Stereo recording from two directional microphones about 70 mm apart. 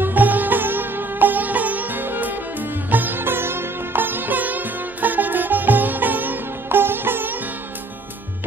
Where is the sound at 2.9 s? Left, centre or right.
Right.